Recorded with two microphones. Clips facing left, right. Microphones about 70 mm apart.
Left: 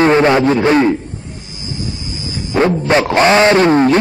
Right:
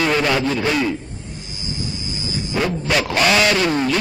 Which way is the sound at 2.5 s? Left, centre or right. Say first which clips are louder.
Left 8 dB; left.